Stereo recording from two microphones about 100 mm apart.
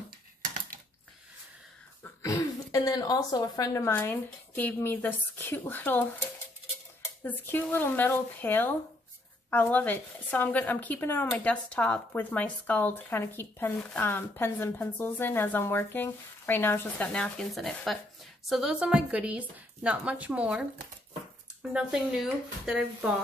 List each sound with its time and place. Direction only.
2.2 s speech: 35° left (ahead or behind)
3.8 s speech: 20° left (ahead or behind)
7.2 s speech: 20° left (ahead or behind)
17.1 s a woman's voice: 10° left (ahead or behind); by 20.6 s 10° right (ahead or behind)
21.7 s speech: 5° right (ahead or behind)